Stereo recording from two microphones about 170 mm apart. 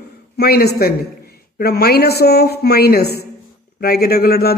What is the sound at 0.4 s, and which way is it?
A man's voice, 70° left (ahead or behind).